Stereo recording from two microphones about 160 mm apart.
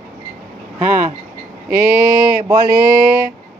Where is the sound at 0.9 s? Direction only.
55° right (ahead or behind).